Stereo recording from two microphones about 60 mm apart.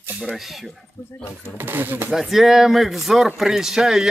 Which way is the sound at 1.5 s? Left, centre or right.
Right.